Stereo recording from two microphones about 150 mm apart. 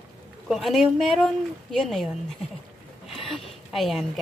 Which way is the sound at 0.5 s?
Centre (ahead or behind).